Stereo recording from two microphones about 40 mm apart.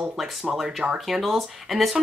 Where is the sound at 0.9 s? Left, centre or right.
Centre.